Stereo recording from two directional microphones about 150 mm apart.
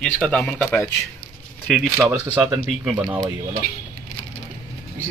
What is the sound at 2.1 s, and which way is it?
Speech, 20° right (ahead or behind).